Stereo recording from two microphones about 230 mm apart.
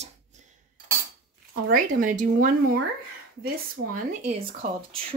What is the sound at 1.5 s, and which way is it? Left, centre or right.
Speech, right.